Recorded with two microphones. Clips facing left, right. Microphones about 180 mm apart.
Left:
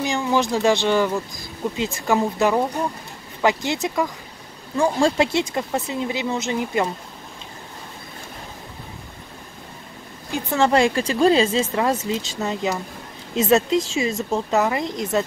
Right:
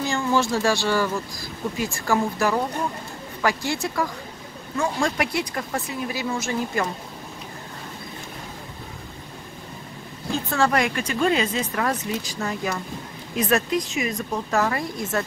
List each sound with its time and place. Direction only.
0.0 s speech: 15° left (ahead or behind)
4.7 s speech: 30° left (ahead or behind)
10.3 s speech: 20° left (ahead or behind)